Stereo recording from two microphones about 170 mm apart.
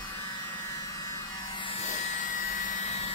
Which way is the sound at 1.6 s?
40° left (ahead or behind).